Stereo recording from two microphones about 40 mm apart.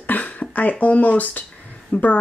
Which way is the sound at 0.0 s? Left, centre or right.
Left.